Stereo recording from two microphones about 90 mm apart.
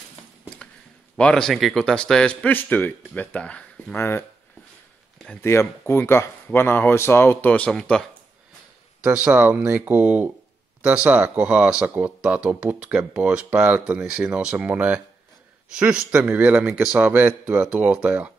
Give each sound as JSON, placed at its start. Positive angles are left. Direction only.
{"t": 1.1, "sound": "speech", "side_deg": 10}
{"t": 3.9, "sound": "speech", "side_deg": 25}
{"t": 5.4, "sound": "speech", "side_deg": 30}
{"t": 7.5, "sound": "speech", "side_deg": 10}
{"t": 9.0, "sound": "speech", "side_deg": -15}